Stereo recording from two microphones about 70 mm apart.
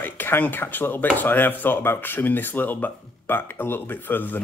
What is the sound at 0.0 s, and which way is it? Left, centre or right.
Speech, left.